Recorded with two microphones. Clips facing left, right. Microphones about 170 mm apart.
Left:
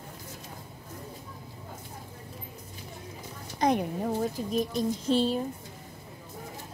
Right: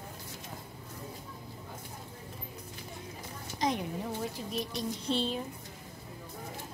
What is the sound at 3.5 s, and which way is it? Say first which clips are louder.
A child's voice: left 6 dB; 55° left (ahead or behind).